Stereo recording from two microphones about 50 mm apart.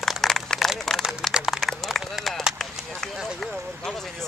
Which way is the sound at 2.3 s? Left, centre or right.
Centre.